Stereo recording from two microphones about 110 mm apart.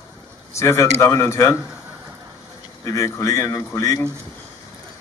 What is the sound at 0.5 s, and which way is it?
Speech, 25° left (ahead or behind).